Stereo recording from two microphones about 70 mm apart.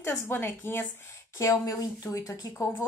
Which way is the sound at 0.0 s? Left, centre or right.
Left.